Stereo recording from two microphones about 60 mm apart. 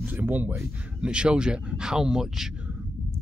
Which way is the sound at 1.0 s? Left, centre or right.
Centre.